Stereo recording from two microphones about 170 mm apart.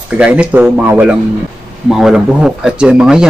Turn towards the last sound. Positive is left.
turn(degrees=-5)  # may be behind; listen again after turning